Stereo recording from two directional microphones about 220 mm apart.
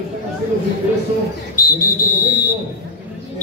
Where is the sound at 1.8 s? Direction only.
40° left (ahead or behind).